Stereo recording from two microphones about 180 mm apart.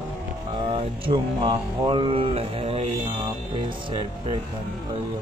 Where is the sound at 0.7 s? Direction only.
30° right (ahead or behind).